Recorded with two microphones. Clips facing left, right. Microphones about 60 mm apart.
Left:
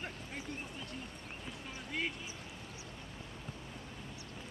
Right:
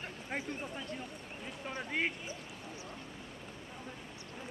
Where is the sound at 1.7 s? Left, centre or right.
Right.